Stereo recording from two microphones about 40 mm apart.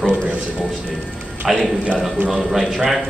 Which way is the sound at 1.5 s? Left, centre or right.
Centre.